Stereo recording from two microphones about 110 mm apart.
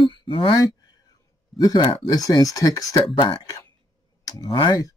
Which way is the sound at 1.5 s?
35° left (ahead or behind).